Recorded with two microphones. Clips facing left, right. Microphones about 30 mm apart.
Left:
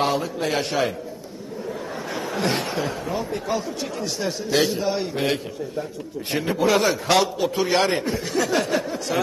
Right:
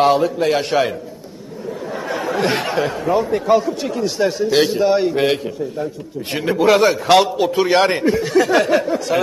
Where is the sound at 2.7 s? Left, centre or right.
Right.